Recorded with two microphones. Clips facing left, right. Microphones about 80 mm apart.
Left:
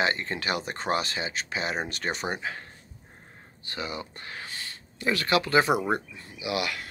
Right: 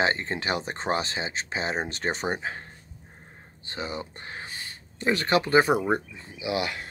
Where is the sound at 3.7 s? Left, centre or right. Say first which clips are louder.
Right 1 dB; right.